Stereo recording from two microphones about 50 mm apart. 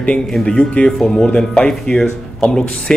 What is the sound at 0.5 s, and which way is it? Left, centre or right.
Speech, left.